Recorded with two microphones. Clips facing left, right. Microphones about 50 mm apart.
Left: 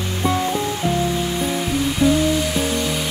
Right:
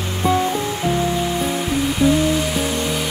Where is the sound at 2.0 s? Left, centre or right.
Right.